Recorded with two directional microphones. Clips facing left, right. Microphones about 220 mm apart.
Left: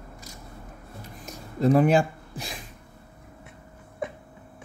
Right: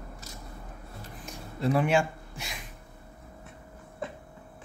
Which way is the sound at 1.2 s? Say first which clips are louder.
Left 7 dB; 40° left (ahead or behind).